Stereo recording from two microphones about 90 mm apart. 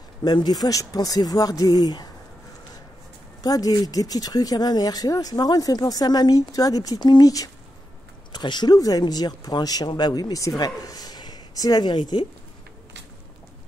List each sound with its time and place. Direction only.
0.2 s speech: 50° left (ahead or behind)
3.4 s speech: 45° left (ahead or behind)
8.3 s speech: 55° left (ahead or behind)